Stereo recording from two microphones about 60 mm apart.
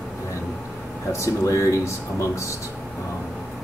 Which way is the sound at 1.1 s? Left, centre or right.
Left.